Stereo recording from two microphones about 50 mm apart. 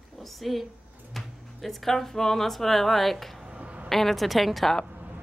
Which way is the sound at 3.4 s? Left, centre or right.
Right.